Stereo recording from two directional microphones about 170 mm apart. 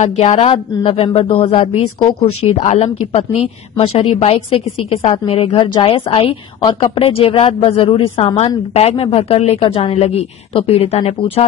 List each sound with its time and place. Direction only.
0.0 s a woman's voice: 40° left (ahead or behind)
2.6 s a woman's voice: 45° left (ahead or behind)